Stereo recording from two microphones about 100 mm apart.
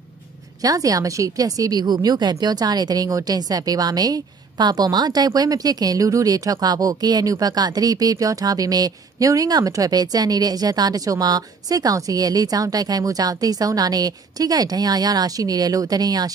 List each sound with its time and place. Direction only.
0.6 s a woman's voice: 35° right (ahead or behind)